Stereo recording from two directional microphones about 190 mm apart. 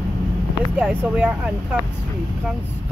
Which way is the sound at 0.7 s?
5° right (ahead or behind).